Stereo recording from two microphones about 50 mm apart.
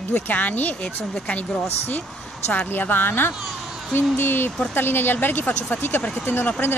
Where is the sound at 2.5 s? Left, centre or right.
Left.